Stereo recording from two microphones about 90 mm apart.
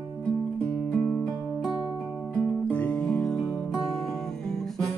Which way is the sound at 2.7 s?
20° left (ahead or behind).